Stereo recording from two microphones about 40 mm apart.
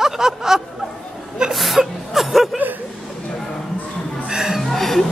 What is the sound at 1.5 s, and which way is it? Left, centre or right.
Chuckle, centre.